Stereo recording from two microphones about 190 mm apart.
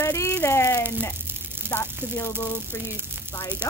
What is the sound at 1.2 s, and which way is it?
Sizzle, 10° right (ahead or behind).